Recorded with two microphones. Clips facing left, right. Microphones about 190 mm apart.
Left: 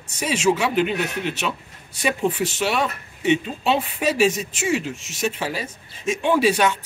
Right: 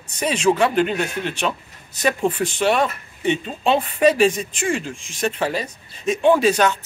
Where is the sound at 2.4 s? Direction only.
50° right (ahead or behind).